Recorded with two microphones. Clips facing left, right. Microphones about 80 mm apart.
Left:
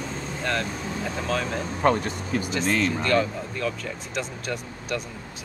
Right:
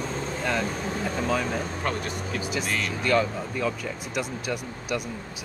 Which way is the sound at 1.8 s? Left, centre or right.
Left.